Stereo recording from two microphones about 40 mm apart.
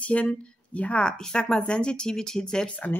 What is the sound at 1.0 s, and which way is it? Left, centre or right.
Speech, left.